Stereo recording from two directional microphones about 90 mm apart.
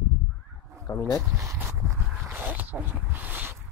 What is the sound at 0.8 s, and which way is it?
Speech, 35° left (ahead or behind).